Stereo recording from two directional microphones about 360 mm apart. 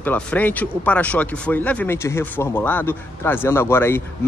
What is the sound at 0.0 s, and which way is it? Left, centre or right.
Speech, centre.